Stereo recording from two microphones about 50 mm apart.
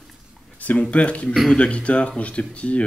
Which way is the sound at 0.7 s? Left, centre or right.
Left.